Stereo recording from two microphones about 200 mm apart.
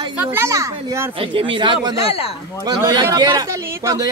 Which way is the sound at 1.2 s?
25° right (ahead or behind).